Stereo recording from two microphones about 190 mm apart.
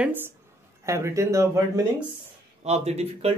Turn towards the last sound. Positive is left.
turn(degrees=-35)  # may be behind; listen again after turning